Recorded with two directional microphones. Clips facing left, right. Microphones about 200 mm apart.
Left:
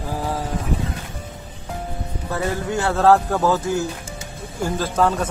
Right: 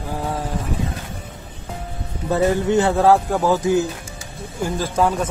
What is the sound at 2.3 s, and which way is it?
A man's voice, 20° right (ahead or behind).